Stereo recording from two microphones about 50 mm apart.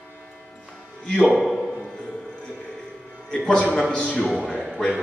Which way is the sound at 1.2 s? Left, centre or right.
Centre.